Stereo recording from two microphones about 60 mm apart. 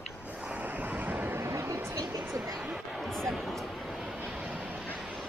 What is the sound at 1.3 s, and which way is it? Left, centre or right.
Vehicle, right.